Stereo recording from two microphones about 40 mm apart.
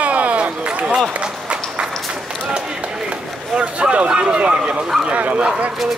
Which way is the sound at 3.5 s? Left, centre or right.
Right.